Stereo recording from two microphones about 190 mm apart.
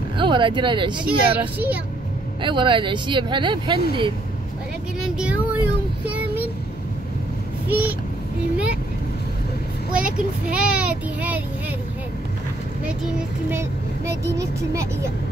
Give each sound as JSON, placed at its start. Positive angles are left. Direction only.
{"t": 0.2, "sound": "speech", "side_deg": -25}
{"t": 1.0, "sound": "a child's voice", "side_deg": -10}
{"t": 2.4, "sound": "speech", "side_deg": -25}
{"t": 5.0, "sound": "a child's voice", "side_deg": -5}
{"t": 7.6, "sound": "vehicle", "side_deg": -10}
{"t": 9.9, "sound": "a child's voice", "side_deg": -5}
{"t": 13.5, "sound": "a child's voice", "side_deg": -15}